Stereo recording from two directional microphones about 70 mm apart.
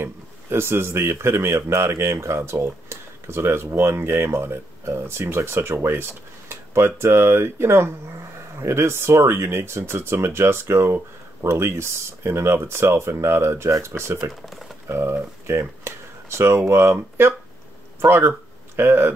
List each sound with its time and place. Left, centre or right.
0.0 s speech: right
6.5 s a sound: right
7.0 s speech: right
14.4 s speech: centre
14.9 s speech: right